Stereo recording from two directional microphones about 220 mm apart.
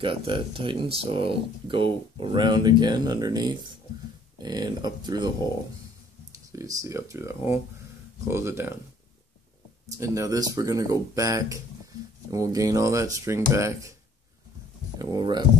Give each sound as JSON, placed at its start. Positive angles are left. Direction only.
{"t": 0.0, "sound": "speech", "side_deg": -25}
{"t": 6.3, "sound": "speech", "side_deg": -15}
{"t": 9.9, "sound": "speech", "side_deg": -15}
{"t": 15.0, "sound": "speech", "side_deg": -20}